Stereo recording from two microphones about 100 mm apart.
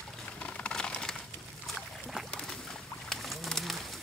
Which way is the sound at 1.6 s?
Centre (ahead or behind).